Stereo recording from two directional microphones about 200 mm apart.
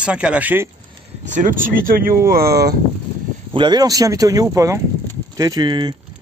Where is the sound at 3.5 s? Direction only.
20° right (ahead or behind).